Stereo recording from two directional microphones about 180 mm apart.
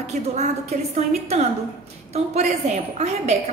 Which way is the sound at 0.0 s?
40° right (ahead or behind).